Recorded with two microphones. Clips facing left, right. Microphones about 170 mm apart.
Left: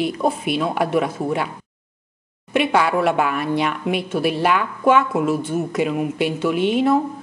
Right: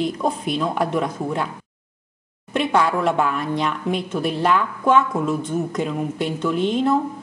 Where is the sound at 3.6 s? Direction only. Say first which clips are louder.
Left 1 dB; 10° left (ahead or behind).